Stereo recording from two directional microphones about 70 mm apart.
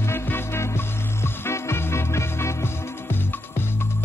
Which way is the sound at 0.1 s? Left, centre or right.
Left.